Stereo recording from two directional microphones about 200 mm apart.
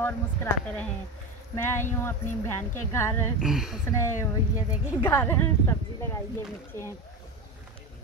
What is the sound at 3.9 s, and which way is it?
A woman's voice, 15° left (ahead or behind).